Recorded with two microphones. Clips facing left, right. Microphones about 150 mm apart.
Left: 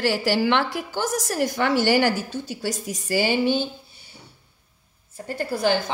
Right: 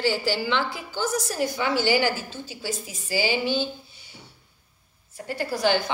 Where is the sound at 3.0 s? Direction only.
60° left (ahead or behind).